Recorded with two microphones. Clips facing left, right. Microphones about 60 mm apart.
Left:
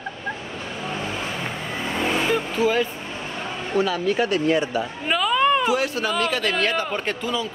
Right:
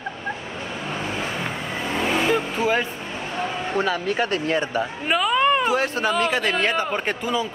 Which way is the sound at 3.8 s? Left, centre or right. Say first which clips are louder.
Left 2 dB; right.